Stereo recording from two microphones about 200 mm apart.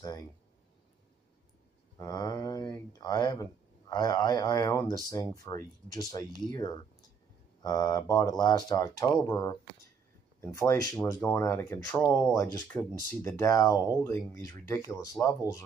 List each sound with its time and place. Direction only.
2.0 s speech: 20° left (ahead or behind)